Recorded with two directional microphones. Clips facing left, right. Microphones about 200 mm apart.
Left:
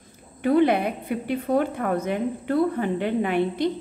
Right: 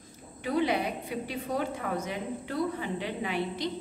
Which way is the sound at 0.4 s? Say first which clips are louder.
Left 8 dB; 55° left (ahead or behind).